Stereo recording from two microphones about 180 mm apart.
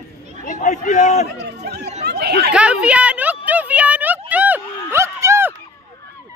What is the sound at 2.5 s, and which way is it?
Speech, 5° right (ahead or behind).